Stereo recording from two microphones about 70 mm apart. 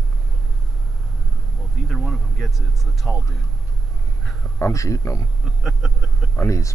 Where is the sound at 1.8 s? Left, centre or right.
Centre.